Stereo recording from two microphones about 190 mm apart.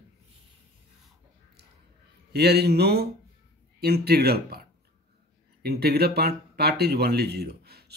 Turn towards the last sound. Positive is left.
turn(degrees=-55)  # may be behind; listen again after turning